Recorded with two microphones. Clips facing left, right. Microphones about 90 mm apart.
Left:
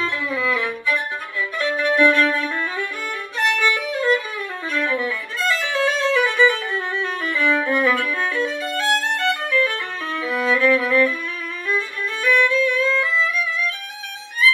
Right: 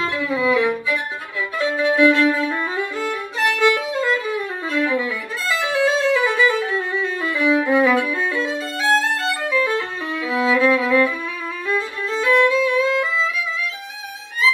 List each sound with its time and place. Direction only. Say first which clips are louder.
0.0 s music: right 3 dB; 15° right (ahead or behind)
1.6 s violin: right 2 dB; 15° right (ahead or behind)